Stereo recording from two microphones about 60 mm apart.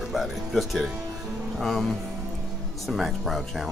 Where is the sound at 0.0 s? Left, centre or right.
Centre.